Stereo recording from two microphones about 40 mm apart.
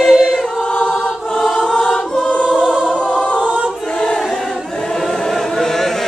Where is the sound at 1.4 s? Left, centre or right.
Centre.